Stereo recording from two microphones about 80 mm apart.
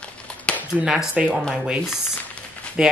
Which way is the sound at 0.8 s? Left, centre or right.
Centre.